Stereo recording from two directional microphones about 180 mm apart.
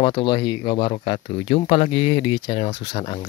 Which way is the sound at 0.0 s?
30° left (ahead or behind).